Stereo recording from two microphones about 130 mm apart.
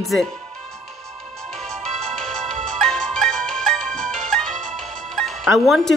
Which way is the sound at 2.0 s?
5° left (ahead or behind).